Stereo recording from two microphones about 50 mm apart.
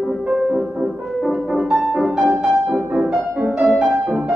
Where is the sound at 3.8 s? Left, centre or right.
Centre.